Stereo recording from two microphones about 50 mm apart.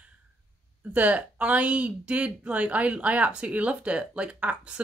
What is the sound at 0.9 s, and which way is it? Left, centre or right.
Speech, right.